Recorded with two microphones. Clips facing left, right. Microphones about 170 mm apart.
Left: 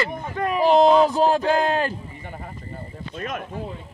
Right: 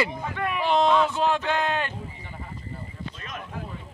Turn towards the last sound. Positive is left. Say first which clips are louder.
# left 9 dB
turn(degrees=55)  # may be behind; listen again after turning